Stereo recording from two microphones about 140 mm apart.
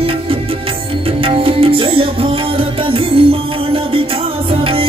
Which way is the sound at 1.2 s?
40° right (ahead or behind).